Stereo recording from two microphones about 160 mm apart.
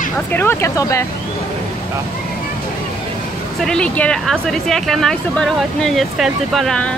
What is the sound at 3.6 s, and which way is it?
Speech, 5° left (ahead or behind).